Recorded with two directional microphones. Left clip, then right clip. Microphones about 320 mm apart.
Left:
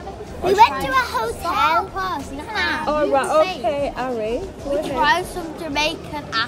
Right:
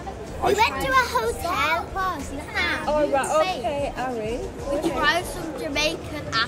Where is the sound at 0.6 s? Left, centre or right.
Centre.